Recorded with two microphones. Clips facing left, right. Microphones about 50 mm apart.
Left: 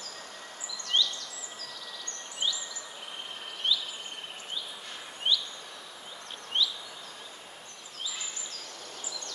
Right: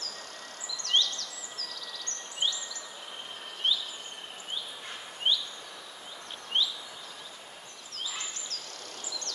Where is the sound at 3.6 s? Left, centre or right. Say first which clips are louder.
Even; right.